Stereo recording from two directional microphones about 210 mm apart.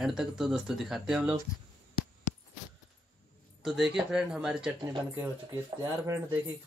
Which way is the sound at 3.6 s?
Centre (ahead or behind).